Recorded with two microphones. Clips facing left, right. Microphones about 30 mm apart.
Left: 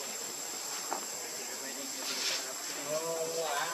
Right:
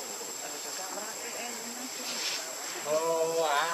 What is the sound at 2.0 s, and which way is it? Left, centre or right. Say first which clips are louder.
Speech: even; centre.